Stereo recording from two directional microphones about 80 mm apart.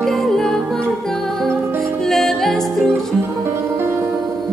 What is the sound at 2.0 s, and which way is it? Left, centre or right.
Music, centre.